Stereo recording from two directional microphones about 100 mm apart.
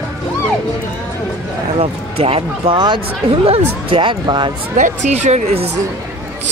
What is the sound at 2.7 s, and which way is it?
Speech, 50° right (ahead or behind).